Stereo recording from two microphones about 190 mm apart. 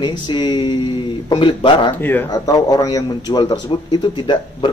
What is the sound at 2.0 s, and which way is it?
A man's voice, 15° left (ahead or behind).